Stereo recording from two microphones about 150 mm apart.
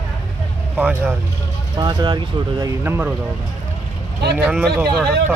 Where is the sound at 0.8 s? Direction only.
10° right (ahead or behind).